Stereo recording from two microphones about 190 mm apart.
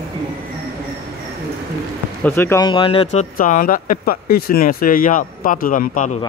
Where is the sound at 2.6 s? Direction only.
25° left (ahead or behind); by 6.1 s 45° left (ahead or behind).